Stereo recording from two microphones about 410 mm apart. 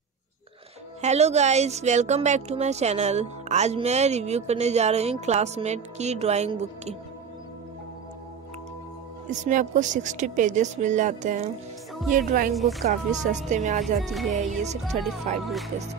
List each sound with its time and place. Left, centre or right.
1.0 s a woman's voice: centre
9.3 s a woman's voice: centre
12.5 s speech: centre
12.8 s a woman's voice: centre
14.0 s speech: centre
14.6 s a woman's voice: centre
15.4 s speech: centre